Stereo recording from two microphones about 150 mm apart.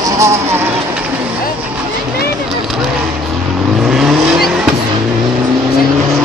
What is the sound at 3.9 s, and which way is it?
Vehicle, centre (ahead or behind).